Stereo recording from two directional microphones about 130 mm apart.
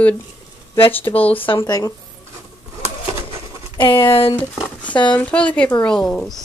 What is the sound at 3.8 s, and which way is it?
Speech, 40° left (ahead or behind).